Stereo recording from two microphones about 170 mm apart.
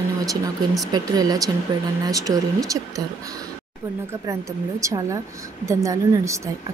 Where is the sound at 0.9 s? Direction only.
20° right (ahead or behind).